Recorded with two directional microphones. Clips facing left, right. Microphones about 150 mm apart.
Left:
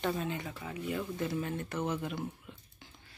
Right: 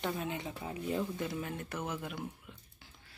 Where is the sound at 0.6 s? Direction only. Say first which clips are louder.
Right 3 dB; 30° right (ahead or behind).